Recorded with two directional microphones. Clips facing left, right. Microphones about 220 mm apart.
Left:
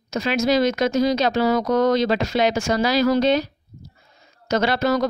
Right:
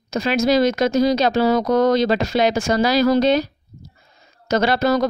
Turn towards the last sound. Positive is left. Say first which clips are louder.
# right 2 dB
turn(degrees=-35)  # may be behind; listen again after turning